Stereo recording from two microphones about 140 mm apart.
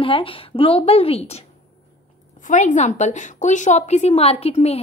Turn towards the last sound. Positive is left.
turn(degrees=45)  # may be behind; listen again after turning